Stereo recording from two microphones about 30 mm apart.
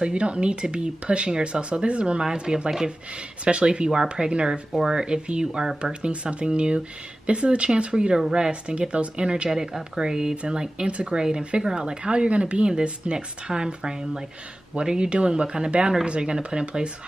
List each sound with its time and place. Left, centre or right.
0.0 s speech: right
3.4 s speech: right
3.9 s speech: right
4.3 s speech: right